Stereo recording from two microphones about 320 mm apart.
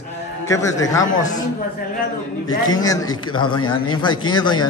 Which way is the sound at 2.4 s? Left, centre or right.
Centre.